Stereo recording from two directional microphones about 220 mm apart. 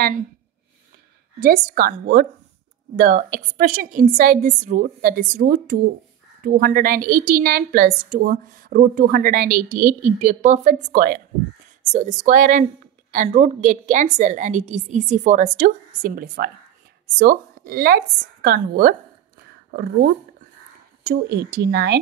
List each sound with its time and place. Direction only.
1.4 s a woman's voice: 40° right (ahead or behind)